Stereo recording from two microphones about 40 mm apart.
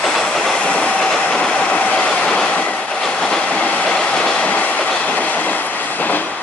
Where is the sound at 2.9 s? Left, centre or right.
Centre.